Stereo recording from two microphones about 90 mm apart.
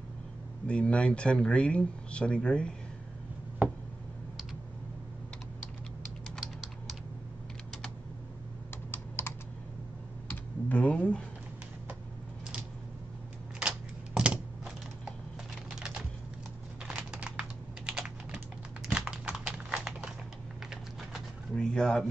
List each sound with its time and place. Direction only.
0.7 s speech: 10° left (ahead or behind)
3.6 s a sound: 20° right (ahead or behind)
6.3 s typing: centre (ahead or behind)
8.9 s computer keyboard: 25° left (ahead or behind)
10.3 s computer keyboard: 20° left (ahead or behind)
13.6 s typewriter: 10° right (ahead or behind)
15.7 s typing: 10° right (ahead or behind)
18.9 s a sound: 10° right (ahead or behind)
21.5 s speech: 5° left (ahead or behind)